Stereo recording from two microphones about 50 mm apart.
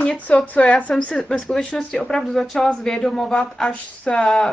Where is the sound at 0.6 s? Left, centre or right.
Left.